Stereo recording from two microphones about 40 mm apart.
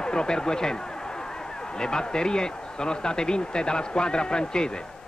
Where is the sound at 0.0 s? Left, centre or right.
Centre.